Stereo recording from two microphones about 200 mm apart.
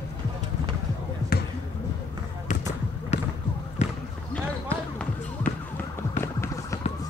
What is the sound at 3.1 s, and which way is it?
Basketball bounce, 35° left (ahead or behind).